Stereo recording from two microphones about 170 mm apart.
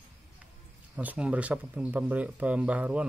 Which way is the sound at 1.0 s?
10° right (ahead or behind).